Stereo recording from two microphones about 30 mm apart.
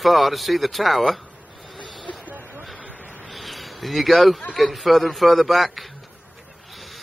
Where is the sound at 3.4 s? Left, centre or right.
Centre.